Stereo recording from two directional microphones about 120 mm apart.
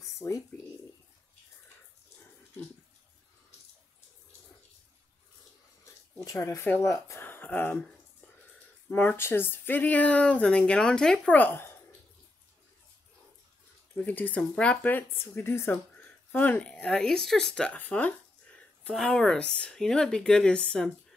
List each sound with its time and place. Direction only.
0.0 s a sound: 25° left (ahead or behind)
6.2 s speech: 25° left (ahead or behind)
13.9 s speech: 15° left (ahead or behind)